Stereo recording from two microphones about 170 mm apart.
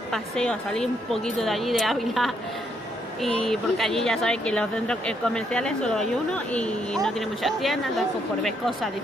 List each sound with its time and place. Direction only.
0.1 s speech: 5° left (ahead or behind)